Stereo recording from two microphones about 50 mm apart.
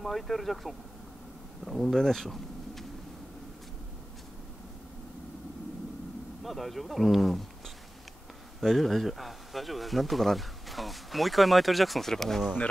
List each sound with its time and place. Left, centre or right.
0.0 s speech: centre
6.4 s speech: centre